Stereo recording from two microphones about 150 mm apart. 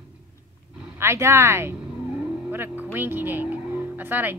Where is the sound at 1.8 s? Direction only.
5° right (ahead or behind).